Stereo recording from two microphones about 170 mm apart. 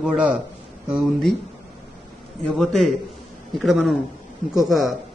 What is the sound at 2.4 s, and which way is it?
Speech, centre (ahead or behind).